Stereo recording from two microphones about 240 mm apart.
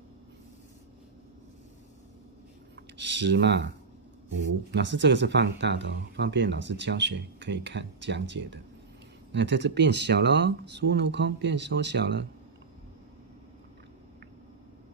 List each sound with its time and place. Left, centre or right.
3.0 s speech: right
4.7 s speech: right